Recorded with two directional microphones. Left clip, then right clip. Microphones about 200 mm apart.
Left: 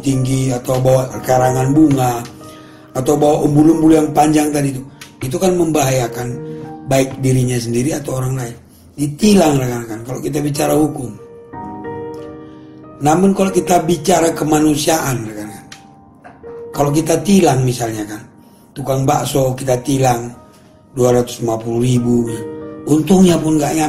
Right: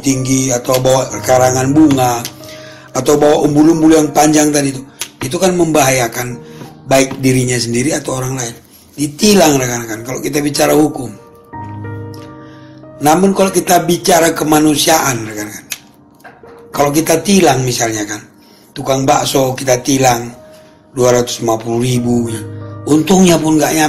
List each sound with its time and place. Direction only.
0.0 s speech: 25° right (ahead or behind)
2.9 s a sound: 25° right (ahead or behind)
4.1 s speech: 25° right (ahead or behind)
13.3 s speech: 20° right (ahead or behind)
16.7 s speech: 20° right (ahead or behind)